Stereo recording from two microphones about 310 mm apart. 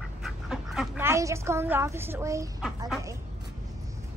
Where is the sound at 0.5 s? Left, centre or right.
Centre.